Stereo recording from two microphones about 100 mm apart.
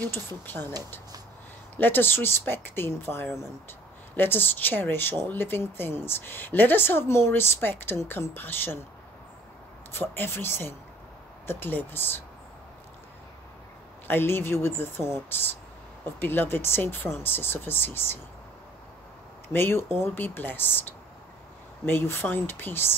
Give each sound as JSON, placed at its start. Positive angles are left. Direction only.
{"t": 0.5, "sound": "a woman's voice", "side_deg": 20}
{"t": 1.8, "sound": "a woman's voice", "side_deg": 20}
{"t": 9.9, "sound": "a woman's voice", "side_deg": 20}
{"t": 14.0, "sound": "a woman's voice", "side_deg": 20}
{"t": 19.5, "sound": "a woman's voice", "side_deg": 25}
{"t": 21.8, "sound": "a woman's voice", "side_deg": 20}